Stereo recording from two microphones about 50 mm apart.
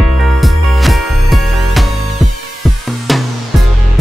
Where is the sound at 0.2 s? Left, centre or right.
Centre.